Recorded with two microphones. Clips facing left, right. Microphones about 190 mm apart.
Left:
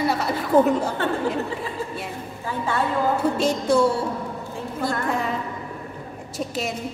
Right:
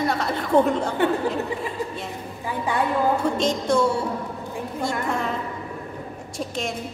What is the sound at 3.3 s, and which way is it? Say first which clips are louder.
Speech: left 1 dB; 10° left (ahead or behind).